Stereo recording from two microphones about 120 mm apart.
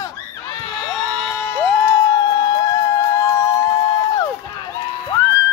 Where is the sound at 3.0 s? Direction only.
25° left (ahead or behind).